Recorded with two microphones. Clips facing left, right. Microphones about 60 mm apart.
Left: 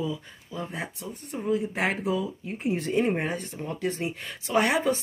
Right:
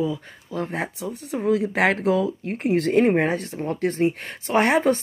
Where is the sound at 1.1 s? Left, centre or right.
Right.